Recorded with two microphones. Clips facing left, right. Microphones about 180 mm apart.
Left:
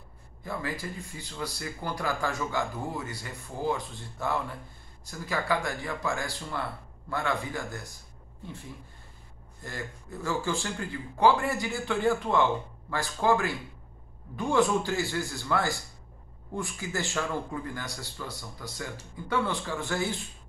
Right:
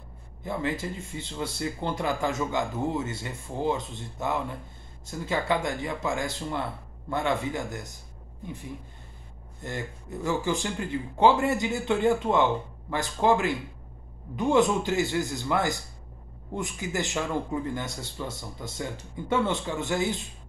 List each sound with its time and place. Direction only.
0.4 s speech: 20° right (ahead or behind)
9.6 s speech: 20° right (ahead or behind)